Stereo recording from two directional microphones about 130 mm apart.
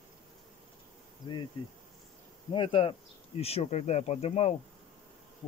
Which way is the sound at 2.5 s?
40° left (ahead or behind).